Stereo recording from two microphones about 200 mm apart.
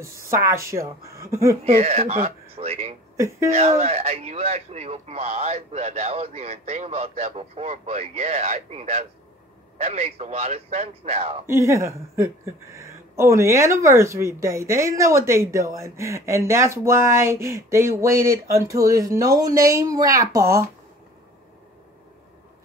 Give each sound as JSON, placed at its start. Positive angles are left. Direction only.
{"t": 0.2, "sound": "speech", "side_deg": -15}
{"t": 1.6, "sound": "speech", "side_deg": -30}
{"t": 3.2, "sound": "speech", "side_deg": -15}
{"t": 3.4, "sound": "speech", "side_deg": -30}
{"t": 11.4, "sound": "speech", "side_deg": -15}